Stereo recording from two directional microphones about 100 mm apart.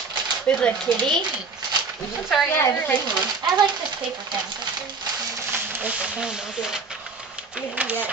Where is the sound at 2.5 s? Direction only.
25° left (ahead or behind).